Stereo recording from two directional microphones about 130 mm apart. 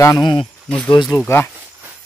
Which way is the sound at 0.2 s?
40° left (ahead or behind).